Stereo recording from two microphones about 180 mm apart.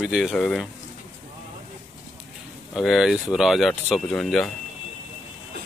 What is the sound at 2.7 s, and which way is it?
Speech, centre (ahead or behind).